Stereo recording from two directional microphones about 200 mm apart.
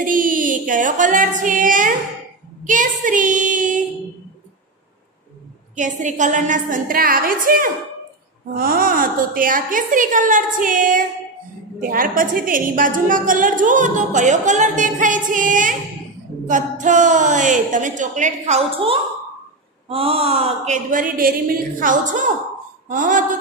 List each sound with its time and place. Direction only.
0.0 s female singing: 40° right (ahead or behind)
2.6 s child singing: 40° right (ahead or behind)
5.8 s a woman's voice: 40° right (ahead or behind)